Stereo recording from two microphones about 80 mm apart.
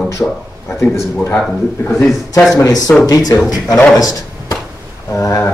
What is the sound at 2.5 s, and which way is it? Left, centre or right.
Speech, left.